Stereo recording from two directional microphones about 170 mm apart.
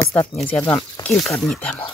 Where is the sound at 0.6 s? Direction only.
20° left (ahead or behind).